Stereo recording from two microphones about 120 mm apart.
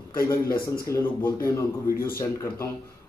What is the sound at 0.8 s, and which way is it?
Speech, 25° left (ahead or behind).